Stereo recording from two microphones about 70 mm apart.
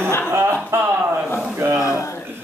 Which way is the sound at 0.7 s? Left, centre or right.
Right.